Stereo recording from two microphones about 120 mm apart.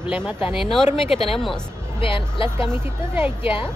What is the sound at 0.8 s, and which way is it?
Speech, 50° left (ahead or behind).